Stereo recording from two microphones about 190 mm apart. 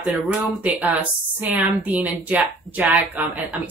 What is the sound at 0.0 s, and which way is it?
A woman's voice, centre (ahead or behind).